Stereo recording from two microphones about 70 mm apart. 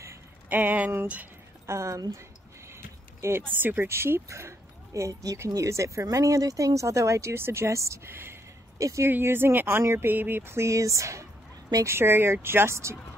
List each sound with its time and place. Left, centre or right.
0.5 s speech: right
1.7 s speech: right
2.7 s a sound: right
3.5 s speech: right
8.7 s speech: right
9.1 s speech: right